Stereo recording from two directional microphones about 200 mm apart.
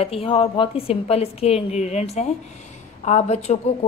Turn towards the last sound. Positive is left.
turn(degrees=35)  # may be behind; listen again after turning